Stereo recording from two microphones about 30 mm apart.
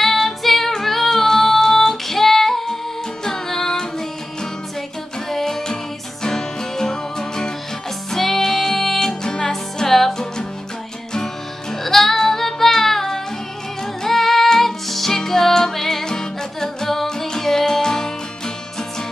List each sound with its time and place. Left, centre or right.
0.0 s female singing: centre
3.3 s music: centre
5.3 s music: centre
9.2 s music: left
9.8 s music: centre
11.8 s music: centre